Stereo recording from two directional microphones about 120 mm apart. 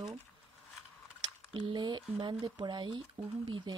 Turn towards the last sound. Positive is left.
turn(degrees=-40)  # may be behind; listen again after turning